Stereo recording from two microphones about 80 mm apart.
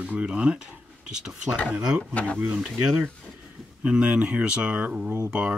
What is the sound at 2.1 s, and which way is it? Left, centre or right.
Speech, centre.